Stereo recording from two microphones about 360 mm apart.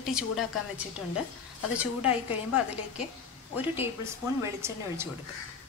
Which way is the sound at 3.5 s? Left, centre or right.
Centre.